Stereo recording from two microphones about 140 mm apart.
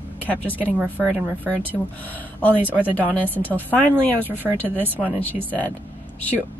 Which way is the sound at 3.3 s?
10° left (ahead or behind).